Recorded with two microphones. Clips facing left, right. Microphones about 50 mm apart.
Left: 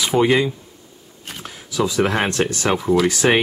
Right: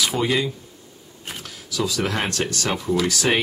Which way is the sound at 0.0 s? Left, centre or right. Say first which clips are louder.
Left 5 dB; left.